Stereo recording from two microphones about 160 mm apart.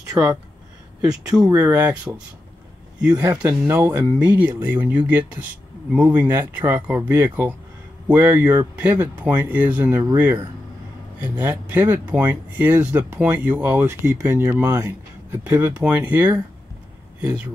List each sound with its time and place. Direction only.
0.1 s speech: 10° right (ahead or behind)
3.1 s speech: 25° right (ahead or behind)
3.4 s speech: 15° right (ahead or behind)